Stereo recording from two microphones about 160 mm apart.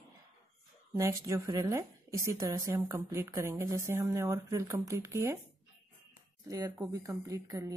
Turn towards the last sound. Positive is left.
turn(degrees=-20)  # may be behind; listen again after turning